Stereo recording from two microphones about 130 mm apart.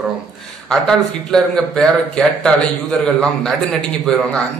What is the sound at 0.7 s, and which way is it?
A man's voice, 5° left (ahead or behind).